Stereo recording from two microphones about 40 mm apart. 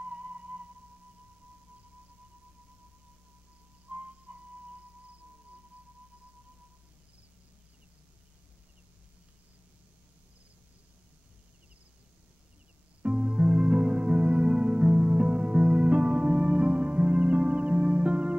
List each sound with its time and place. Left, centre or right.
0.0 s theremin: right
3.9 s music: right
13.0 s music: right